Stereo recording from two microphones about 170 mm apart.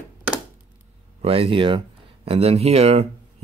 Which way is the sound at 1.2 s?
35° right (ahead or behind).